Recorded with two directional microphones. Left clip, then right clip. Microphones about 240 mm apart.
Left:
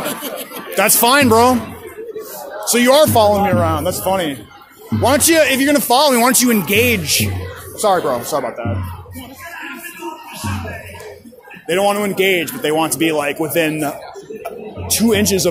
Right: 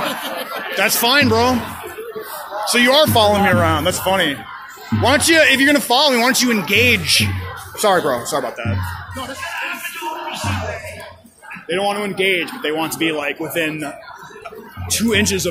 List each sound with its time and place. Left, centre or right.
0.7 s a man's voice: left
2.7 s a man's voice: left
3.4 s speech: centre
3.8 s a man's voice: centre
7.8 s speech: centre
8.3 s speech: centre
11.6 s a man's voice: left